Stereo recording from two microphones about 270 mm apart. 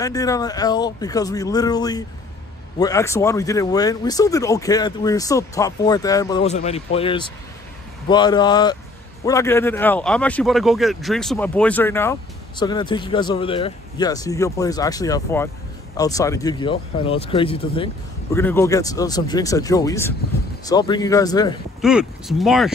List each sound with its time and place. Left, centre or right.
0.0 s speech: centre
6.4 s speech: left
18.3 s speech: centre
21.8 s speech: centre